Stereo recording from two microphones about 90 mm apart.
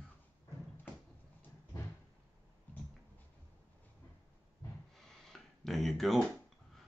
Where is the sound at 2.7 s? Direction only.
20° left (ahead or behind).